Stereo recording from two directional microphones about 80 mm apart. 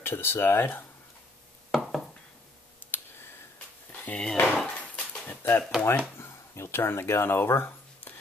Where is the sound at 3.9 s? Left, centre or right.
Centre.